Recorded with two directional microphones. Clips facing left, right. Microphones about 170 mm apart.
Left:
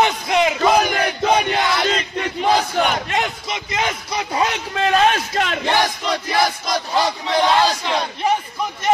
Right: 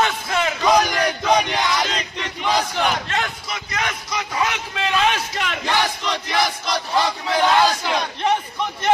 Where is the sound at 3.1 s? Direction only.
20° left (ahead or behind); by 5.6 s 45° left (ahead or behind).